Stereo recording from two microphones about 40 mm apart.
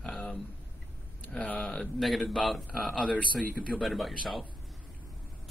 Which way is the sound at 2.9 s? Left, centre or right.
Left.